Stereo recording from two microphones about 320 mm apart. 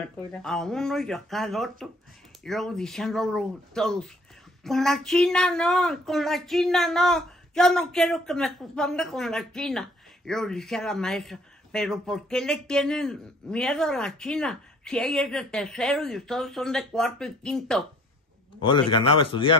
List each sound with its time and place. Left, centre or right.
0.3 s speech: centre
18.9 s speech: centre